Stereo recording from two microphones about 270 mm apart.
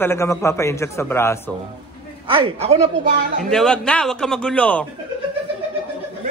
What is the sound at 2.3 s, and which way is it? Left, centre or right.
Speech, right.